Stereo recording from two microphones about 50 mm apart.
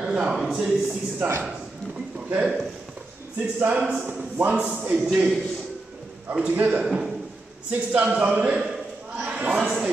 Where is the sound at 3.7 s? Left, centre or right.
Right.